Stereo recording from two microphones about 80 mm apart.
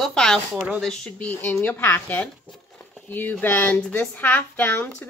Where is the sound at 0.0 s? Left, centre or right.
Centre.